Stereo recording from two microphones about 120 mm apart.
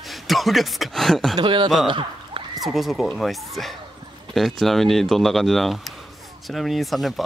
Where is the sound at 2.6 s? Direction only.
Centre (ahead or behind).